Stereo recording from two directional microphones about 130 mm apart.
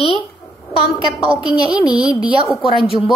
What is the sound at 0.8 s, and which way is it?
Speech, 35° left (ahead or behind).